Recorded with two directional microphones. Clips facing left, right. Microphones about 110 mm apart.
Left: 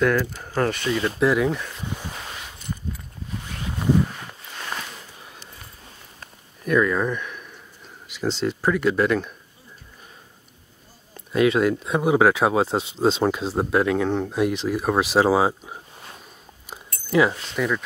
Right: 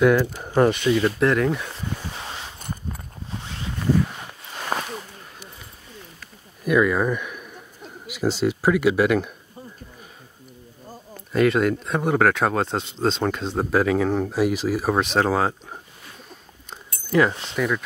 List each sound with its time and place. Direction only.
0.0 s speech: 15° right (ahead or behind)
1.2 s speech: 5° left (ahead or behind)
2.6 s a sound: 45° right (ahead or behind)
4.7 s a sound: 40° right (ahead or behind)
6.6 s speech: 10° right (ahead or behind)
11.1 s speech: centre (ahead or behind)
17.1 s speech: 5° left (ahead or behind)